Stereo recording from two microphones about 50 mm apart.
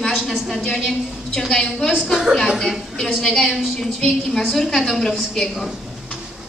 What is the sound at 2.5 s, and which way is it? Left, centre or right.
A woman's voice, centre.